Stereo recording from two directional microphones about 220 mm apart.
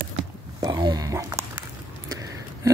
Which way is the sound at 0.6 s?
20° right (ahead or behind).